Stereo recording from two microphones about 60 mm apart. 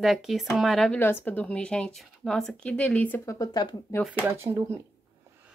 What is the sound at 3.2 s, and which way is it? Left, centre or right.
Speech, left.